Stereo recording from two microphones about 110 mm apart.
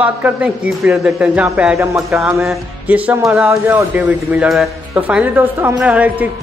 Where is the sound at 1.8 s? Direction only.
25° right (ahead or behind).